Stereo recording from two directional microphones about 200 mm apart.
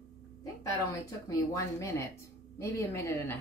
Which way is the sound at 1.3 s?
15° left (ahead or behind).